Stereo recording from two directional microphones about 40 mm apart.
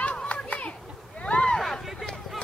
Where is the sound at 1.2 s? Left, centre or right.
Left.